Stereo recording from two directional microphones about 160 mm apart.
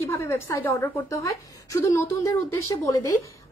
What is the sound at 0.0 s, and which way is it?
A woman's voice, 15° left (ahead or behind).